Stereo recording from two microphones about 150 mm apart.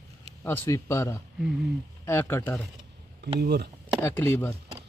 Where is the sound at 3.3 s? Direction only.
90° right.